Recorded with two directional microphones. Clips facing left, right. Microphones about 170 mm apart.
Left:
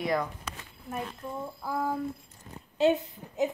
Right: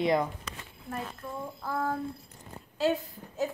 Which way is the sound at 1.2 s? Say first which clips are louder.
Left 1 dB; 15° left (ahead or behind).